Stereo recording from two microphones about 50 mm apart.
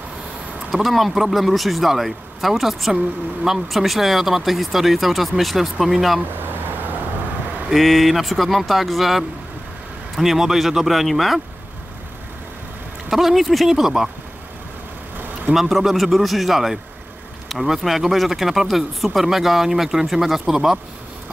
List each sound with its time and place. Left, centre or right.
0.7 s speech: centre
6.4 s vehicle: right
7.7 s speech: centre
13.1 s speech: centre
15.5 s speech: centre